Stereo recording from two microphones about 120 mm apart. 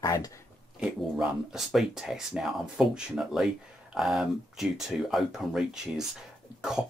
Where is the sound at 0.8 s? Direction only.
5° right (ahead or behind).